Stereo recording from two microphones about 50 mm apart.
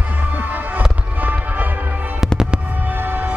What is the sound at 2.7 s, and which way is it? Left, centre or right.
Music, right.